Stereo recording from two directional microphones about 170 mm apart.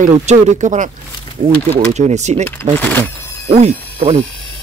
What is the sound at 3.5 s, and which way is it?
Speech, 40° right (ahead or behind).